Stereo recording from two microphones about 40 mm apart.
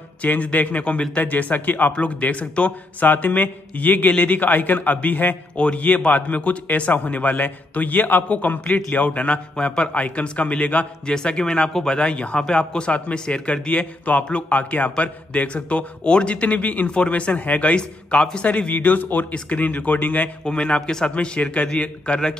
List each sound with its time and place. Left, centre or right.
0.2 s a man's voice: left
1.9 s a man's voice: left
3.0 s a man's voice: left
5.6 s a man's voice: left
11.1 s a man's voice: left
12.1 s a man's voice: left
16.8 s a man's voice: left
17.1 s a man's voice: left
17.7 s a man's voice: left
18.7 s a man's voice: left
20.4 s a man's voice: left